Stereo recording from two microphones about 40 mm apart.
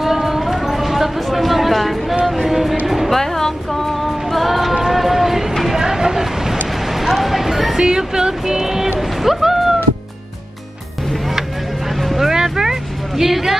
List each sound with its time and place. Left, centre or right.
0.0 s a sound: centre
2.9 s music: centre
3.2 s music: centre
5.7 s vehicle: centre
7.7 s music: centre
9.2 s a sound: centre
12.2 s music: centre
13.2 s speech: centre